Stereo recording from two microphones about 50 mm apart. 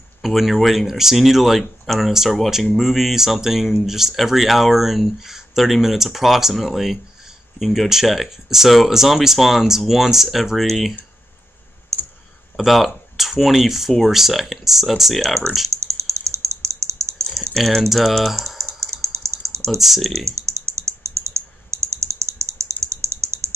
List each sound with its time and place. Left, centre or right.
0.2 s speech: centre
12.5 s speech: centre
15.7 s typing: right
17.4 s speech: centre
18.9 s typing: right
19.8 s speech: centre
20.2 s typing: right